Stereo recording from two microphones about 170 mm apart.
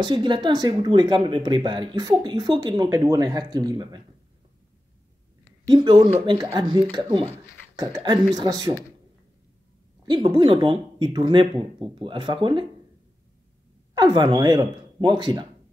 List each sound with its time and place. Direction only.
0.0 s speech: 25° right (ahead or behind)
5.7 s speech: 25° right (ahead or behind)
10.0 s speech: 30° right (ahead or behind)
13.9 s speech: 25° right (ahead or behind)